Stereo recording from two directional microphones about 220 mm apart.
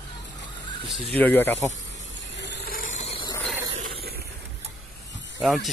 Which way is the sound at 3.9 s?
45° right (ahead or behind).